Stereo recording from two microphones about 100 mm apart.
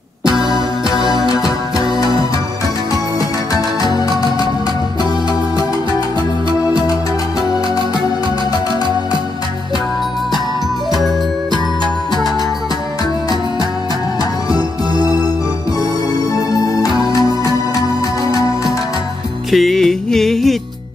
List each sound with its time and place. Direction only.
1.3 s music: 35° left (ahead or behind)
3.9 s music: 40° left (ahead or behind)
17.1 s music: 35° left (ahead or behind)
19.5 s music: centre (ahead or behind)